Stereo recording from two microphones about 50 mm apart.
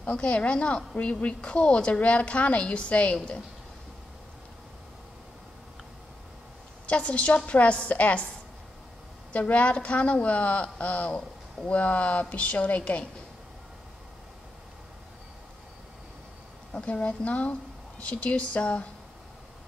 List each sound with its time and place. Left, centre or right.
0.0 s speech: left
6.9 s speech: left
9.3 s speech: left
16.7 s speech: left